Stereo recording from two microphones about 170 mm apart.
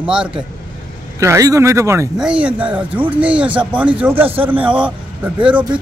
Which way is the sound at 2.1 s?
5° right (ahead or behind).